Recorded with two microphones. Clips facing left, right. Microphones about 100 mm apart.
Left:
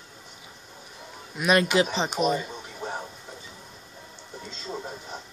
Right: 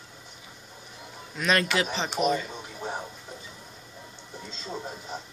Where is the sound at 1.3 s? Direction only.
15° left (ahead or behind).